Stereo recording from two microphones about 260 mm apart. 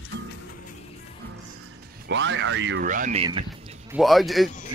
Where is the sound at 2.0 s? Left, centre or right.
Right.